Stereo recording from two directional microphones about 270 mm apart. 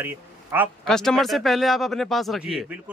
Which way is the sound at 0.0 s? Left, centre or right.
Centre.